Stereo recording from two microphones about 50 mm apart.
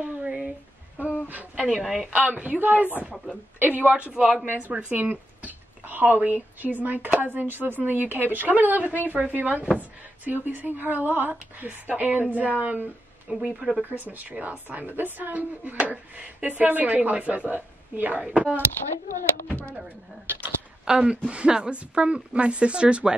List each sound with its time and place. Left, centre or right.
0.2 s a sound: right
1.8 s speech: centre
2.1 s a woman's voice: right
4.1 s a woman's voice: centre
4.6 s a woman's voice: right
13.8 s a woman's voice: right
20.8 s a woman's voice: centre